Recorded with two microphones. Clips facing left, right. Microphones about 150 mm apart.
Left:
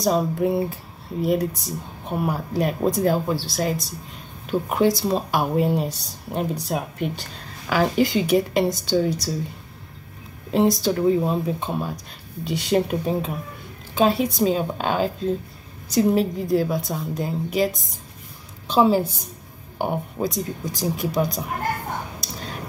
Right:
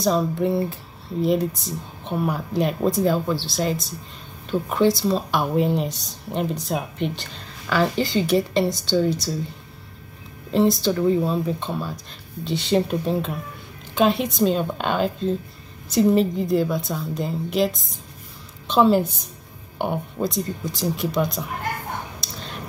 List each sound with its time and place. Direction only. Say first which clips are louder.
0.0 s speech: even; 10° left (ahead or behind)
4.5 s speech: even; 10° left (ahead or behind)
10.5 s speech: even; 10° left (ahead or behind)
18.7 s speech: right 1 dB; 5° left (ahead or behind)
22.2 s a sound: left 2 dB; 5° left (ahead or behind)